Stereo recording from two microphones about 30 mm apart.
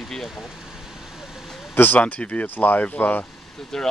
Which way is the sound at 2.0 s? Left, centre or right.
Left.